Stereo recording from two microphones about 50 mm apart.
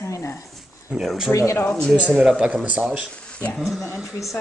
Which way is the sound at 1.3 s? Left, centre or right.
Left.